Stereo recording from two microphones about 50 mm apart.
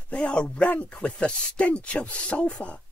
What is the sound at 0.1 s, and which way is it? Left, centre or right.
Speech, left.